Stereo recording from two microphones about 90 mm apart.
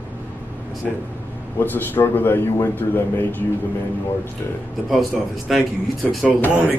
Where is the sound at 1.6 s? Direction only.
20° left (ahead or behind).